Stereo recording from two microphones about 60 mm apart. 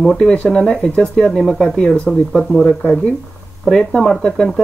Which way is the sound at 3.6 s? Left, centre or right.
Centre.